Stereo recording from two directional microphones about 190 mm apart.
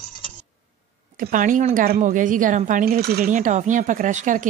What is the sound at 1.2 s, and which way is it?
A woman's voice, 45° right (ahead or behind).